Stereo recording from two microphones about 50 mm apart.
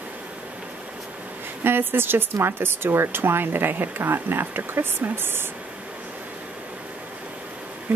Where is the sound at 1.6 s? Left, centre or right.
Right.